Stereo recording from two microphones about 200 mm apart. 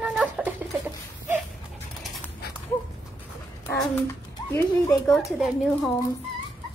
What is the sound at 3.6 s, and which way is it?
A child's voice, 10° left (ahead or behind).